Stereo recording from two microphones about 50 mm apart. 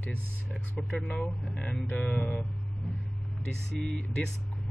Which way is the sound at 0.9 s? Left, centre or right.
Left.